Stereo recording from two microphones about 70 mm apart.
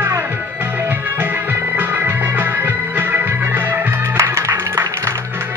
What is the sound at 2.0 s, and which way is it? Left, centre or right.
Music, right.